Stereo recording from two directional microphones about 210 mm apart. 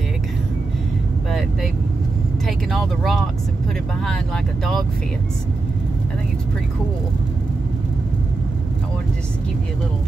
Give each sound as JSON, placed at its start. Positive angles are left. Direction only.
{"t": 2.4, "sound": "speech", "side_deg": 0}